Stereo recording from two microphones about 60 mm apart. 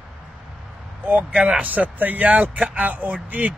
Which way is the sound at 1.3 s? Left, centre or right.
Centre.